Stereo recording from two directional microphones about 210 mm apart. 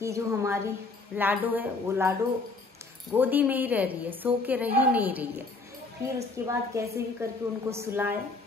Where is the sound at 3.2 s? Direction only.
10° right (ahead or behind).